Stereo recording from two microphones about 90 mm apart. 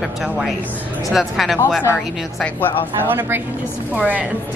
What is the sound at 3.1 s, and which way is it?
A woman's voice, 25° right (ahead or behind).